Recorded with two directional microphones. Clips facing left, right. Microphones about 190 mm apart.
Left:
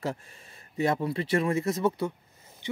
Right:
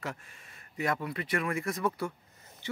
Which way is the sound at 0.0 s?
30° left (ahead or behind).